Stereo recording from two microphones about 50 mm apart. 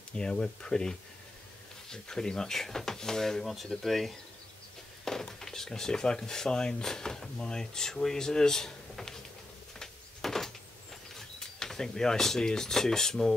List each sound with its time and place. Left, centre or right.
0.1 s speech: centre
9.8 s door: centre
11.1 s speech: centre